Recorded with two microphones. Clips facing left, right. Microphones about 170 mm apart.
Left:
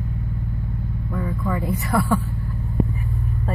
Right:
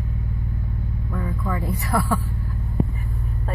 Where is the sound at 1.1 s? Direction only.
Centre (ahead or behind).